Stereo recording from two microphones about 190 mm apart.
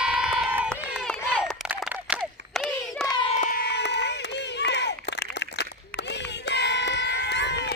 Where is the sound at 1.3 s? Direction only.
5° right (ahead or behind).